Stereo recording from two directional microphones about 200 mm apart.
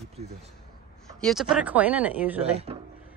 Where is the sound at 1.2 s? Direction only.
Centre (ahead or behind).